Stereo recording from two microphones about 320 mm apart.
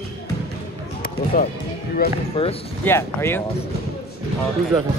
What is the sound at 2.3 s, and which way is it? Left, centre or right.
Speech, centre.